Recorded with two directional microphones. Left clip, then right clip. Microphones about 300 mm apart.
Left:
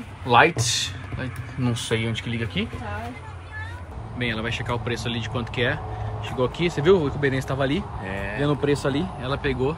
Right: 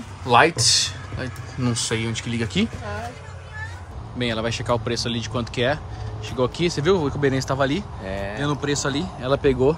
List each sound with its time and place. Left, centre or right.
0.2 s a man's voice: centre
4.2 s speech: centre
8.0 s speech: right
8.4 s speech: centre